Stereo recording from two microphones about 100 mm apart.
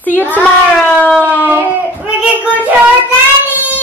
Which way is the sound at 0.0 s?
15° left (ahead or behind).